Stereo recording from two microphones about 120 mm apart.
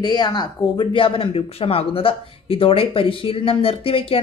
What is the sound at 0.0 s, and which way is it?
Speech, 40° left (ahead or behind).